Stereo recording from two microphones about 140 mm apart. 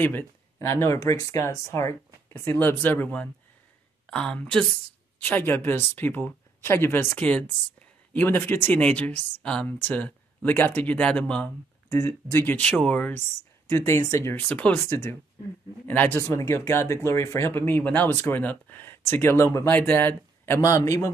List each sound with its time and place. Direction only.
0.6 s a woman's voice: 20° left (ahead or behind)